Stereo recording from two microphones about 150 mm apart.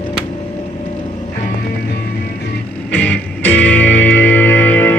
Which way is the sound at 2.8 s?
10° left (ahead or behind).